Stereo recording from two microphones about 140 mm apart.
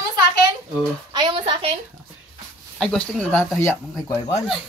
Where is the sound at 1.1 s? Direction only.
35° right (ahead or behind).